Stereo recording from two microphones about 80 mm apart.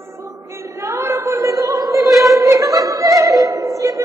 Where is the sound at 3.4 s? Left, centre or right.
Right.